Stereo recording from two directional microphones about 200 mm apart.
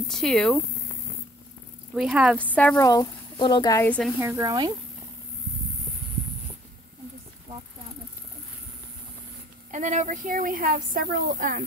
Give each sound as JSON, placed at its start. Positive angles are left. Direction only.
{"t": 0.1, "sound": "speech", "side_deg": 0}
{"t": 2.0, "sound": "speech", "side_deg": -5}
{"t": 2.5, "sound": "speech", "side_deg": 10}
{"t": 2.9, "sound": "speech", "side_deg": 20}
{"t": 4.2, "sound": "speech", "side_deg": -15}
{"t": 9.7, "sound": "speech", "side_deg": -40}